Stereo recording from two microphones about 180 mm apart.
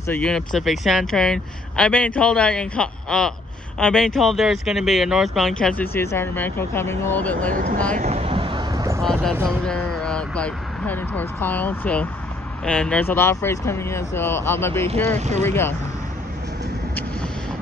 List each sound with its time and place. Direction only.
0.0 s speech: 10° left (ahead or behind)
7.5 s speech: 50° right (ahead or behind)
7.9 s vehicle: 40° right (ahead or behind); by 9.0 s 20° right (ahead or behind)
9.0 s speech: centre (ahead or behind)
14.9 s speech: 40° right (ahead or behind)
15.4 s speech: 10° left (ahead or behind)